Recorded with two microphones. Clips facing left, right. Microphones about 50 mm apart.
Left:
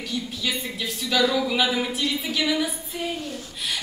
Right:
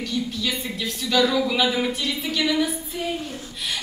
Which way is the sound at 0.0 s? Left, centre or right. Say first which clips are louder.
Right 3 dB; centre.